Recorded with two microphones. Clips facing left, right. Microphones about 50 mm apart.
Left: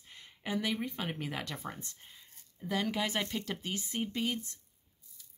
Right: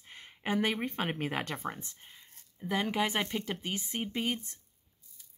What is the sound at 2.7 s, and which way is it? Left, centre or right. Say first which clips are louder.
Speech: right 2 dB; right.